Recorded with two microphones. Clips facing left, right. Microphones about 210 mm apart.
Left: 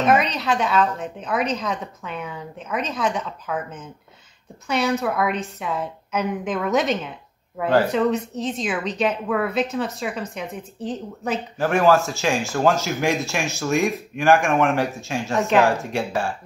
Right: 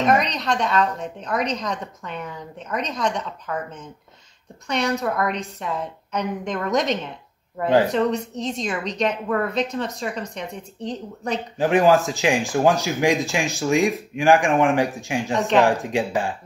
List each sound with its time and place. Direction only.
0.0 s a woman's voice: 5° left (ahead or behind)
11.5 s speech: 15° right (ahead or behind)